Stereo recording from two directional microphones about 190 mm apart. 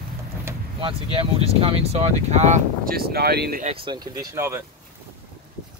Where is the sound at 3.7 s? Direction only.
25° right (ahead or behind).